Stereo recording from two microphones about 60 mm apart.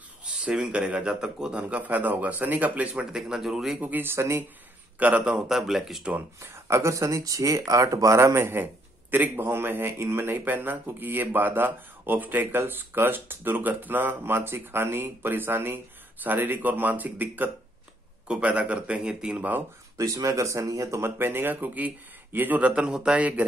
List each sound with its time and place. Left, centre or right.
0.2 s a man's voice: centre
3.7 s a man's voice: right
5.5 s speech: centre
6.4 s a man's voice: right; by 19.4 s centre
20.0 s speech: right
21.0 s speech: right; by 23.2 s centre